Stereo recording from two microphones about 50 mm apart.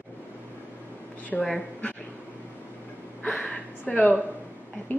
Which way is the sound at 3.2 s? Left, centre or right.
Left.